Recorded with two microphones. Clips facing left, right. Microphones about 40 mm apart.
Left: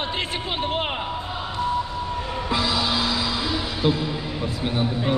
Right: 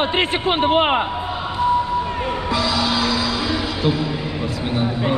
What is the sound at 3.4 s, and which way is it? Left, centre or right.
Music, right.